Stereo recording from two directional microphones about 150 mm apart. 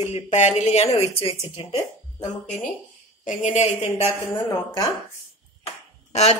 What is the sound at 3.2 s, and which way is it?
A woman's voice, 60° left (ahead or behind).